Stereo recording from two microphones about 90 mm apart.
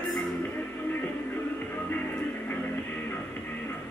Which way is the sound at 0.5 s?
20° left (ahead or behind).